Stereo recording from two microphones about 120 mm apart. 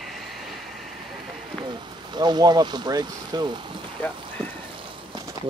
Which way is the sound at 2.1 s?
35° right (ahead or behind).